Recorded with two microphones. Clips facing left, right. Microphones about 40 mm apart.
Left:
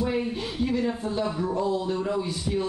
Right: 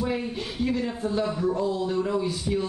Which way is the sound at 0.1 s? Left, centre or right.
Centre.